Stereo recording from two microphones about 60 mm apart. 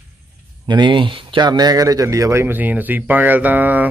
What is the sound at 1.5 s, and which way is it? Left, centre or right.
Speech, right.